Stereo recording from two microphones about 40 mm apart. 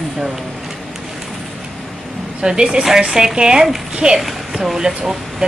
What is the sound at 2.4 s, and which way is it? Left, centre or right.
A woman's voice, right.